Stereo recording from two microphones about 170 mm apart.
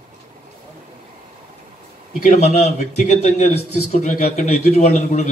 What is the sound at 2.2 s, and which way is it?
A man's voice, 40° left (ahead or behind).